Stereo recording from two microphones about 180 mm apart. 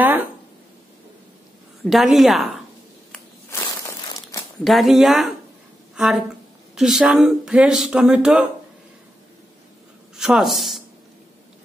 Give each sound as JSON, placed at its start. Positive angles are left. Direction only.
{"t": 0.0, "sound": "a sound", "side_deg": -10}
{"t": 1.9, "sound": "speech", "side_deg": 0}
{"t": 3.4, "sound": "crushing", "side_deg": 15}
{"t": 4.6, "sound": "speech", "side_deg": 0}
{"t": 10.1, "sound": "speech", "side_deg": -5}